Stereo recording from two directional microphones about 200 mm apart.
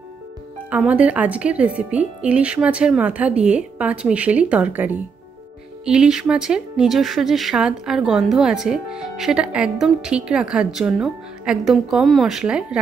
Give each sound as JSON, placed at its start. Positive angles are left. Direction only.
{"t": 0.7, "sound": "speech", "side_deg": -5}